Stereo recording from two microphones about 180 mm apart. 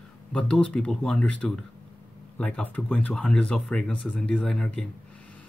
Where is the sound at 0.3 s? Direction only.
5° left (ahead or behind).